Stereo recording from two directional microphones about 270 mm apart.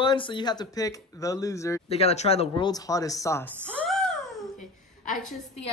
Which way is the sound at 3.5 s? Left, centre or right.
Centre.